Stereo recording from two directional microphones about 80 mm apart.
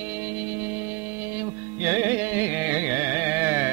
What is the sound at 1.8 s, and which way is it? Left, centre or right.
Carnatic music, right.